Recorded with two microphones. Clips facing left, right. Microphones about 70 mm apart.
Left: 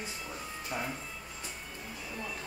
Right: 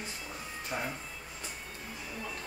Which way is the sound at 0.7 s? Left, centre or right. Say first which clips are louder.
Right 1 dB; right.